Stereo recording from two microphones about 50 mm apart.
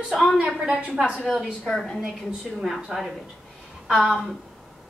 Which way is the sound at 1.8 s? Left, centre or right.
Centre.